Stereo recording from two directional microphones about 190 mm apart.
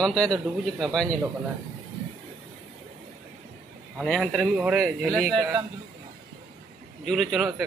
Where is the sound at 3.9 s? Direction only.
Centre (ahead or behind).